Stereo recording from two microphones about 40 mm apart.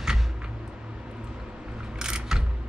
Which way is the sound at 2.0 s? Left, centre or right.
Centre.